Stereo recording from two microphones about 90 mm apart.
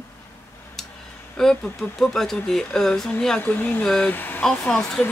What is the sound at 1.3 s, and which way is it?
Speech, 5° left (ahead or behind).